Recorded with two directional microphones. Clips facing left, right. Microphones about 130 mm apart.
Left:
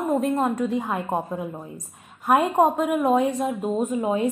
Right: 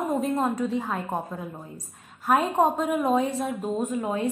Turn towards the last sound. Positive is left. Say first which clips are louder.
# left 4 dB
turn(degrees=15)  # may be behind; listen again after turning